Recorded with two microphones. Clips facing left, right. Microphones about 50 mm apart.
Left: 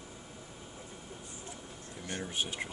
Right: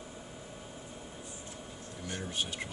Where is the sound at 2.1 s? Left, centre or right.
Centre.